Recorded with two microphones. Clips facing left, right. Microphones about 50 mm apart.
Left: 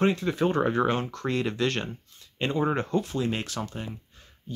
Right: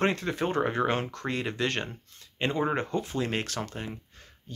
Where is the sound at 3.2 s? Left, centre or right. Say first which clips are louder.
Left 1 dB; right.